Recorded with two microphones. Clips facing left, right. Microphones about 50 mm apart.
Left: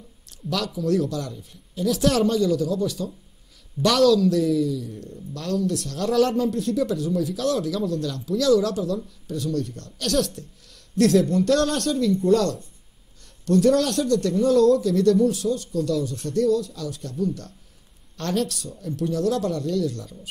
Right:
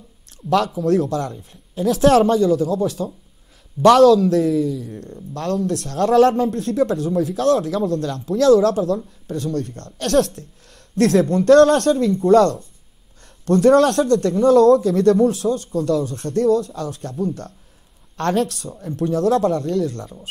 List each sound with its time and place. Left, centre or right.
0.3 s speech: right